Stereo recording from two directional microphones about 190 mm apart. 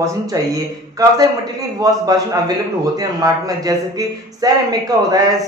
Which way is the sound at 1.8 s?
20° right (ahead or behind).